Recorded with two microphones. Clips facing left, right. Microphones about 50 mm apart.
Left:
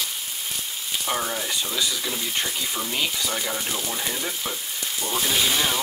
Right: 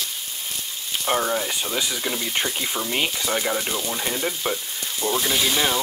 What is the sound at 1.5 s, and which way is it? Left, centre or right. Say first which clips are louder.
Speech: right 1 dB; right.